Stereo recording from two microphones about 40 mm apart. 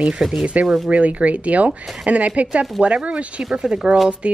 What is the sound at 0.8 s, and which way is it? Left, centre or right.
A woman's voice, right.